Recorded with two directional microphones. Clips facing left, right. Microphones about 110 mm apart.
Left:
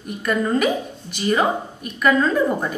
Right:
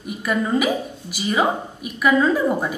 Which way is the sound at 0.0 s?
5° right (ahead or behind).